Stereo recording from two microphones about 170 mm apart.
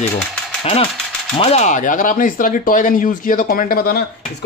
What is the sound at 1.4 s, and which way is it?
A man's voice, 40° left (ahead or behind).